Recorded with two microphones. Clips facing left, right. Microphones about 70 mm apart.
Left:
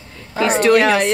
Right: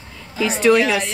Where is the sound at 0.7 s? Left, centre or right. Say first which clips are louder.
Left 1 dB; left.